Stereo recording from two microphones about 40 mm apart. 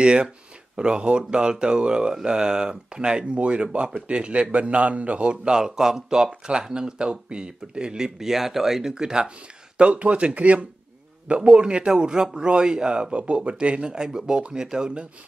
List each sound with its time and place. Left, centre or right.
0.0 s a man's voice: right
9.8 s speech: right
11.2 s a man's voice: right